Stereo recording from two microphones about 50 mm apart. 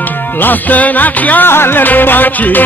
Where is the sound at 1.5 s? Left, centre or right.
Left.